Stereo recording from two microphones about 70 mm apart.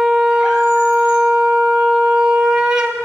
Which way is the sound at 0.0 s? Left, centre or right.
Centre.